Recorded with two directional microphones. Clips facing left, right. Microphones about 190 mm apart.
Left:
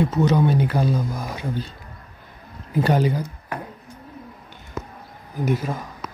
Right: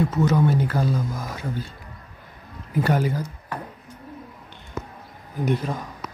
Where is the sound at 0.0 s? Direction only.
20° left (ahead or behind).